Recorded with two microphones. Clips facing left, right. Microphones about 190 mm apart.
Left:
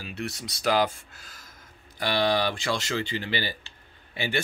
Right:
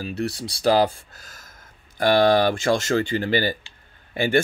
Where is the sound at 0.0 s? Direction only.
35° right (ahead or behind).